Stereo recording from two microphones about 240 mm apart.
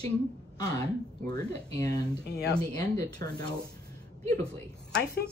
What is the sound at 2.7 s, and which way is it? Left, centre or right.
Speech, centre.